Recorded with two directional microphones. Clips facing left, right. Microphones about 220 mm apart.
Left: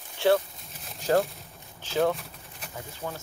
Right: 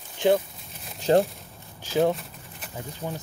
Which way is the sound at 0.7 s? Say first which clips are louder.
Right 2 dB; centre (ahead or behind).